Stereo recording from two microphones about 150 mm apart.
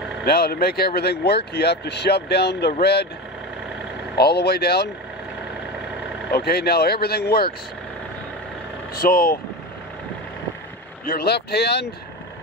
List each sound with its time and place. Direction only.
0.2 s speech: 90° left
4.2 s speech: 90° left
6.3 s speech: 90° left
8.9 s speech: 80° left
11.1 s speech: 90° left